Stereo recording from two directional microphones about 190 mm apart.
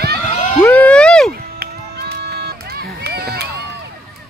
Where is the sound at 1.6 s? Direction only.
55° right (ahead or behind).